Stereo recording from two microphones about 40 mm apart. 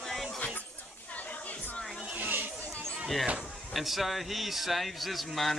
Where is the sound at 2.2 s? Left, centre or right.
Right.